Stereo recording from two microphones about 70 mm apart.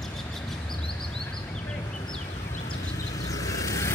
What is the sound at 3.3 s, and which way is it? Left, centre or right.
Vehicle, left.